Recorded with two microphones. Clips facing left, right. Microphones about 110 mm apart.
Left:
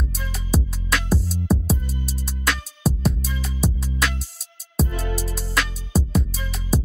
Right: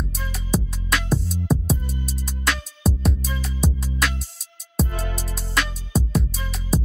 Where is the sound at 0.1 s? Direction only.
Centre (ahead or behind).